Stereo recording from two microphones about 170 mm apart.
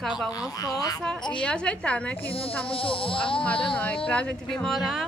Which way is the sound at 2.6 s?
30° left (ahead or behind).